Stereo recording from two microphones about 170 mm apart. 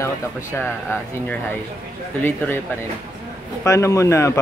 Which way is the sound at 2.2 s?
10° left (ahead or behind).